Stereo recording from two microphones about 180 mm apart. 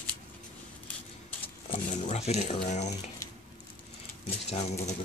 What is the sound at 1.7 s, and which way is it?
Speech, 40° left (ahead or behind).